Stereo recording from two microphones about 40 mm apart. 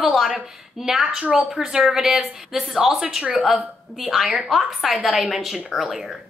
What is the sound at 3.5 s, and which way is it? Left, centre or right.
A woman's voice, centre.